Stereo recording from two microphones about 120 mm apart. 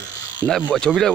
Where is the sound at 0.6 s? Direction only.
5° left (ahead or behind).